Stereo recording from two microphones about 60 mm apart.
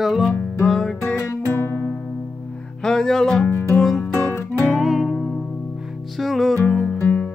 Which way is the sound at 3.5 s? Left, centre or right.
Left.